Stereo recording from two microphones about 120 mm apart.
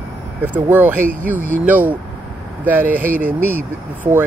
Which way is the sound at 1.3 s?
15° left (ahead or behind).